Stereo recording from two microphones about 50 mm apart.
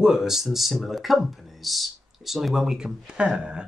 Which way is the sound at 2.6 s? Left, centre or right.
Centre.